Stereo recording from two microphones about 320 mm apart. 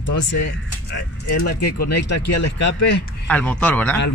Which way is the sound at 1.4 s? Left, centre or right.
Left.